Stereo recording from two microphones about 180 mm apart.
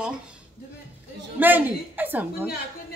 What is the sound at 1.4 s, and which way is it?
A woman's voice, 10° right (ahead or behind).